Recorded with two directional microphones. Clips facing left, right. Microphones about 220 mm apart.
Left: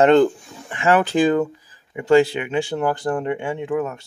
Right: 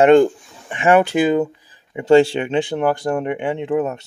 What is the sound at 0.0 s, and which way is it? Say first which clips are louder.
Speech: right 2 dB; 10° right (ahead or behind).